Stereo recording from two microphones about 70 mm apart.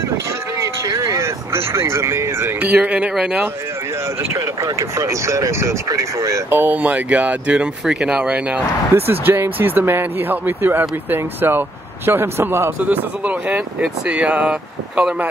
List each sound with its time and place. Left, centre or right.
0.6 s vehicle: right
2.7 s speech: centre
4.2 s speech: right
6.5 s speech: right
8.9 s speech: right
12.8 s speech: right